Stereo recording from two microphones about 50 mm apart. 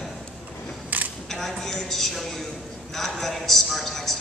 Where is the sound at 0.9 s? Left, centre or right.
Right.